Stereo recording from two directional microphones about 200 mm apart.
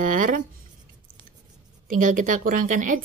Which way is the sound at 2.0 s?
40° right (ahead or behind).